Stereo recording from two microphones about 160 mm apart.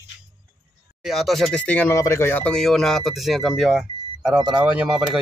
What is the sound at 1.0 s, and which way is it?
Speech, centre (ahead or behind).